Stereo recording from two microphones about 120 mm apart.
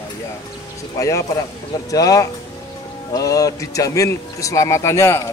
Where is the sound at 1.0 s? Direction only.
25° left (ahead or behind).